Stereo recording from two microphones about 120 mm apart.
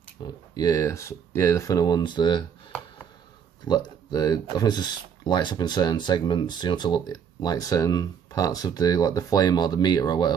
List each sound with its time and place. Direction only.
0.2 s speech: 30° left (ahead or behind)
3.6 s speech: 35° left (ahead or behind)